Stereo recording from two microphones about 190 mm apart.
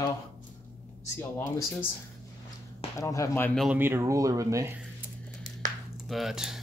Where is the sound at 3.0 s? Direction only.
15° left (ahead or behind).